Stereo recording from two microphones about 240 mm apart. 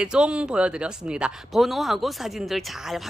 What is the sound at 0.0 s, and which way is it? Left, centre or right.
Speech, centre.